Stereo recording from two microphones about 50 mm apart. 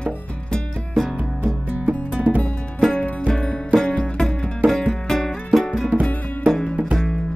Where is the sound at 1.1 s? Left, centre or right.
Right.